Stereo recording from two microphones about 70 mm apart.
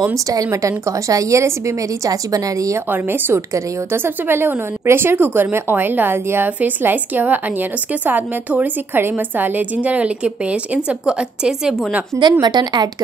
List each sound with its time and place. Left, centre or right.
0.1 s a woman's voice: right
2.9 s a woman's voice: right
3.3 s a woman's voice: right
3.9 s speech: right; by 11.7 s centre
12.2 s a woman's voice: right